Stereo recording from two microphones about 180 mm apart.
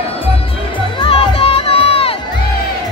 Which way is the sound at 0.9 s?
30° left (ahead or behind).